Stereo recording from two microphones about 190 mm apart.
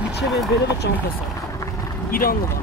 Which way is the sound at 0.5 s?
70° left (ahead or behind).